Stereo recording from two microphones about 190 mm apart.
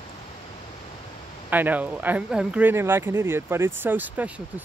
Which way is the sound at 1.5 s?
10° right (ahead or behind).